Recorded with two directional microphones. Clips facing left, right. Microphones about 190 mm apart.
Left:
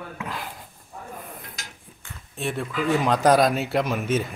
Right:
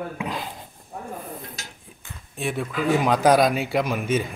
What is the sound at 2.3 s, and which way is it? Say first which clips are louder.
Speech: right 1 dB; centre (ahead or behind).